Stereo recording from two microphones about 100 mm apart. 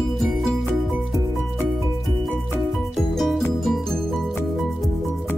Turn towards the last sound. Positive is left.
turn(degrees=0)  # may be behind; listen again after turning